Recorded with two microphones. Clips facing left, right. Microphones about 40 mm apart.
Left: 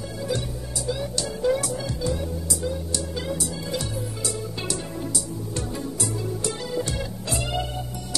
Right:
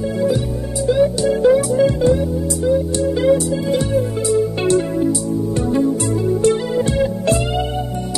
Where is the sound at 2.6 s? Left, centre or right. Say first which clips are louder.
Right 15 dB; right.